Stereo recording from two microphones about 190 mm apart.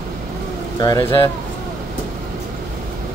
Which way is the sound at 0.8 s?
20° left (ahead or behind).